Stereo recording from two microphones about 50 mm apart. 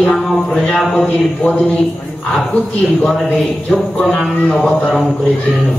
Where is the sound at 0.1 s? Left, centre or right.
Centre.